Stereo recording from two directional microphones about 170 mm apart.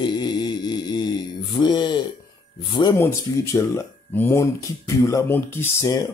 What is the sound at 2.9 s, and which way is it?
Speech, 15° left (ahead or behind).